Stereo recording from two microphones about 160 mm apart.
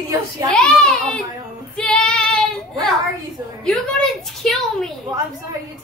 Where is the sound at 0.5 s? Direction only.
5° left (ahead or behind).